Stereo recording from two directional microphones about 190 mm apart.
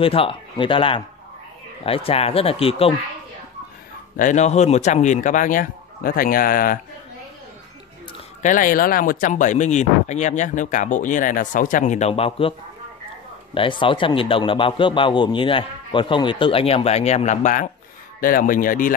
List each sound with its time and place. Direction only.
0.0 s a man's voice: 30° left (ahead or behind)
4.2 s speech: 40° left (ahead or behind)
8.4 s speech: 45° left (ahead or behind)
13.6 s a man's voice: 25° left (ahead or behind); by 18.9 s 45° left (ahead or behind)